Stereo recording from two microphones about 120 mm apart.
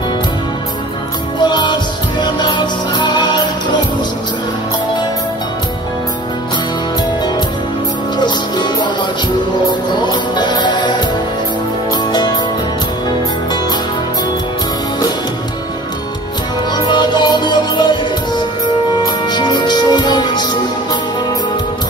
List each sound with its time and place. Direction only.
1.4 s music: 40° left (ahead or behind)
8.2 s music: 40° left (ahead or behind)
10.3 s music: 40° left (ahead or behind)
12.1 s music: 35° left (ahead or behind)
16.7 s music: 35° left (ahead or behind)